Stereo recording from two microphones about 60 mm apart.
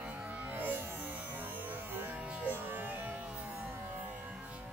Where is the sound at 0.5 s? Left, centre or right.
Right.